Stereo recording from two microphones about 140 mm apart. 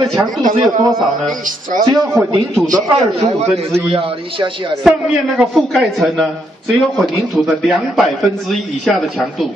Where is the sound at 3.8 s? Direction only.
40° right (ahead or behind).